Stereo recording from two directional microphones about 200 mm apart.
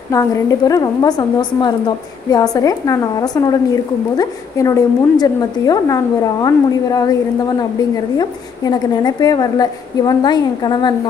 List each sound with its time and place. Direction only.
0.1 s a woman's voice: 15° left (ahead or behind)